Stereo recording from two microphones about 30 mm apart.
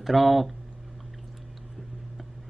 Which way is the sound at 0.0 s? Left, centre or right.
Centre.